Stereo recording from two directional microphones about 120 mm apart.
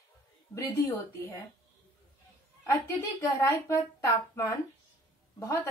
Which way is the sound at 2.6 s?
25° left (ahead or behind).